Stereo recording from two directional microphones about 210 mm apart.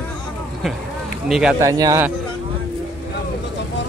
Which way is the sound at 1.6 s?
15° right (ahead or behind).